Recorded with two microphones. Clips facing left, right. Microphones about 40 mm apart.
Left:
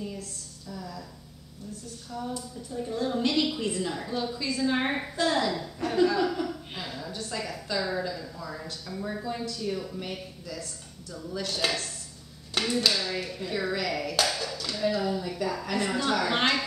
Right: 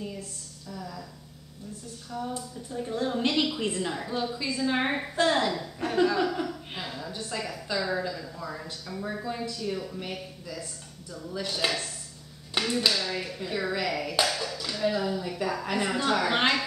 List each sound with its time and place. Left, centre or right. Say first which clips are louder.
0.7 s a sound: even; centre
2.0 s a woman's voice: right 1 dB; centre
4.0 s speech: right 1 dB; centre
5.1 s a woman's voice: right 2 dB; right
5.9 s speech: even; centre
6.7 s a sound: right 1 dB; centre
7.6 s speech: right 1 dB; centre
15.3 s a woman's voice: right 1 dB; right